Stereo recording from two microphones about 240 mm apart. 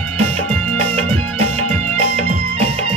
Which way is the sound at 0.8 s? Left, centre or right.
Right.